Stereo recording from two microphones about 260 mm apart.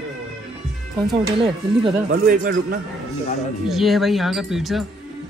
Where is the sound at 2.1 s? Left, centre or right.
Right.